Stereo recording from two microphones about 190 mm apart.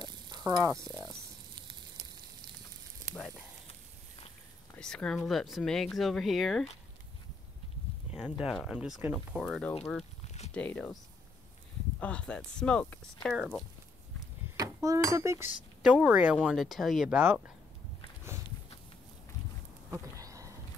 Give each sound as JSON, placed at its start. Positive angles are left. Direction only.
{"t": 0.0, "sound": "stir", "side_deg": -20}
{"t": 4.7, "sound": "speech", "side_deg": 5}
{"t": 8.2, "sound": "speech", "side_deg": 0}
{"t": 10.2, "sound": "a sound", "side_deg": 35}
{"t": 10.5, "sound": "speech", "side_deg": 5}
{"t": 12.0, "sound": "speech", "side_deg": 5}
{"t": 14.6, "sound": "speech", "side_deg": -15}
{"t": 19.9, "sound": "a sound", "side_deg": -15}